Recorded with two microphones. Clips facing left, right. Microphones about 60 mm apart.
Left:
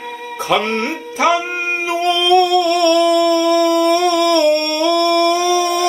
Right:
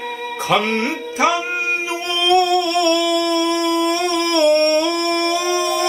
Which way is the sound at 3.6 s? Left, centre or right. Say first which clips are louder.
Left 5 dB; right.